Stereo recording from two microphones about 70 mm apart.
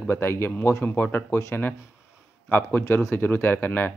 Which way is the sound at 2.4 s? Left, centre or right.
Left.